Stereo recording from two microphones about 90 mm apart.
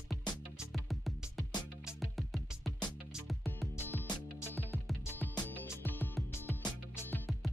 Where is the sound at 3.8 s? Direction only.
25° left (ahead or behind).